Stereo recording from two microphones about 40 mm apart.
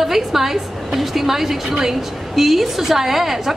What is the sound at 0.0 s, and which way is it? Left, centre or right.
A woman's voice, centre.